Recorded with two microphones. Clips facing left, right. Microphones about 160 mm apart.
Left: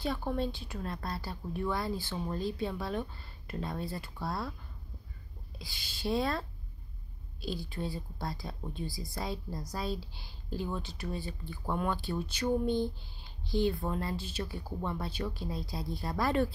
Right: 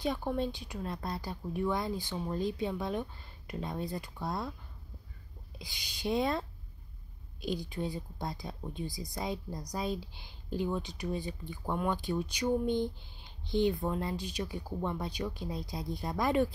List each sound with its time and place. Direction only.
0.0 s speech: 15° right (ahead or behind)
5.6 s a woman's voice: 20° right (ahead or behind)
7.4 s a woman's voice: 20° right (ahead or behind)